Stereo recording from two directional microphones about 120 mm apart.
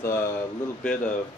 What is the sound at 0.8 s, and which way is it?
Speech, 10° left (ahead or behind).